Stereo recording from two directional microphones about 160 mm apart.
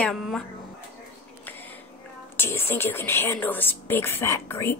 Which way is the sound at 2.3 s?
15° left (ahead or behind).